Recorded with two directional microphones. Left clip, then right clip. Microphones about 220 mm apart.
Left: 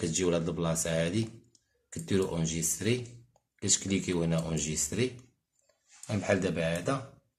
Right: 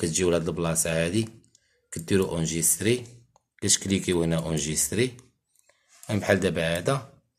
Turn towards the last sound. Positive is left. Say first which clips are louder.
# right 5 dB
turn(degrees=-45)  # may be behind; listen again after turning